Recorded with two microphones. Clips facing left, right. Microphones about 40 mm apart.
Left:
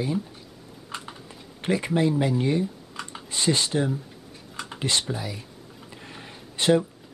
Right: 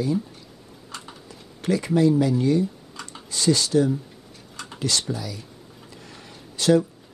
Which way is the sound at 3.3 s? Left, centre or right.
Left.